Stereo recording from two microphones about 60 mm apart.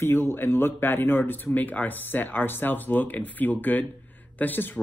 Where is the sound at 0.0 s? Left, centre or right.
Left.